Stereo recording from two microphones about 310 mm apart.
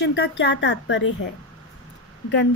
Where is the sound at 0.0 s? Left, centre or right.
Left.